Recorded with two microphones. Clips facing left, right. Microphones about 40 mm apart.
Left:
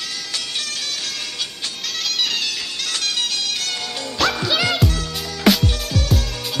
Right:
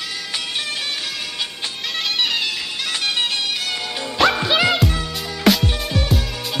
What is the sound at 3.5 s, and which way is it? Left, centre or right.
Music, centre.